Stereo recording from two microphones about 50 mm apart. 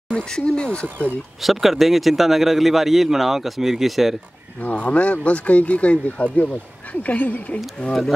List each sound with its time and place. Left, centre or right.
0.1 s speech: centre
1.4 s speech: centre
4.6 s speech: left